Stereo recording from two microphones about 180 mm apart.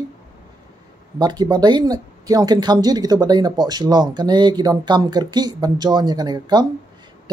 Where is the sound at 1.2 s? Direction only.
25° right (ahead or behind).